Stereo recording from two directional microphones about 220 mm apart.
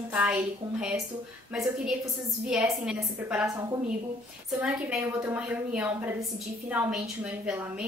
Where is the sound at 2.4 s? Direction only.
5° right (ahead or behind).